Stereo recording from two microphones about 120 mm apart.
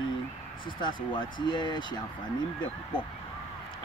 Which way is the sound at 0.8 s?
40° left (ahead or behind).